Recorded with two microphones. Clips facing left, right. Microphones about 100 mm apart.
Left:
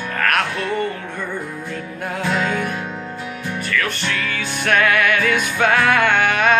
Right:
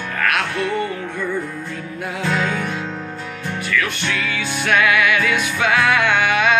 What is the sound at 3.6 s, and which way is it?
Music, 45° left (ahead or behind).